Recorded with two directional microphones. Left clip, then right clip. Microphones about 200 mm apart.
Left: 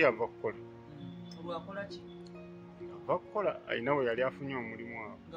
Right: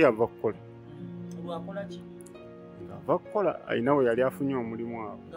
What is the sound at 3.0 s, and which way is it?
Speech, 55° right (ahead or behind).